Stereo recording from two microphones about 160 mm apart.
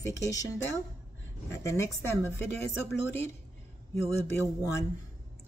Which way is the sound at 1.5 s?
20° left (ahead or behind).